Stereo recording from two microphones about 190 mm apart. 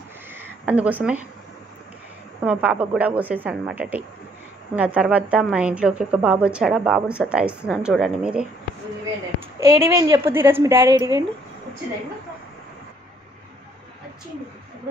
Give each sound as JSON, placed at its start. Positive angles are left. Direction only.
{"t": 0.3, "sound": "a sound", "side_deg": -10}
{"t": 2.4, "sound": "a woman's voice", "side_deg": -5}
{"t": 9.6, "sound": "a woman's voice", "side_deg": -20}